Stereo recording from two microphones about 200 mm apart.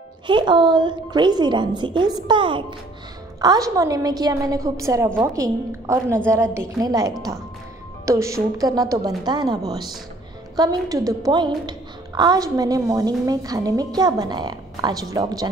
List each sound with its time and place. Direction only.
0.3 s a woman's voice: 25° right (ahead or behind)